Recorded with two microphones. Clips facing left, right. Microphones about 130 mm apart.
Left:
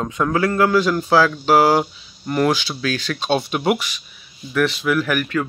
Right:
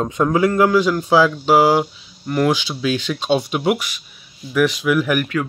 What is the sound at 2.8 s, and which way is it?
Speech, 15° right (ahead or behind).